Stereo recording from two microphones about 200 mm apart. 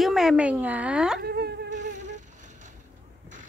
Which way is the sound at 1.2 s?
55° right (ahead or behind).